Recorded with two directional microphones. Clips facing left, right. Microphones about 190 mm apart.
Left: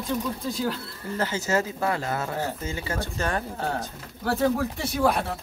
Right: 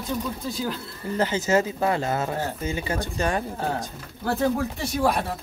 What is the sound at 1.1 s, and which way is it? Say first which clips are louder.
Speech: right 4 dB; 20° right (ahead or behind).